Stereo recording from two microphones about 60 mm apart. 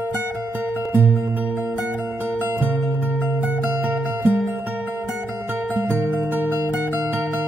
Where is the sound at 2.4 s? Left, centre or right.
Right.